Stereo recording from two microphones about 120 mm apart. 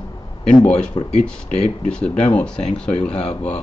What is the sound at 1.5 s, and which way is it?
Speech, 65° left (ahead or behind).